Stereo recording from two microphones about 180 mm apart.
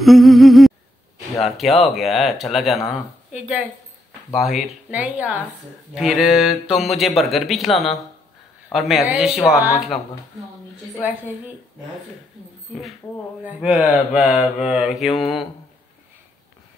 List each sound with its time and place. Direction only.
0.0 s humming: centre (ahead or behind)
1.4 s speech: centre (ahead or behind)
13.5 s speech: 5° right (ahead or behind)